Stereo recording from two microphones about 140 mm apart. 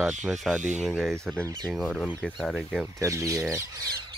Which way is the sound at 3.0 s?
20° right (ahead or behind).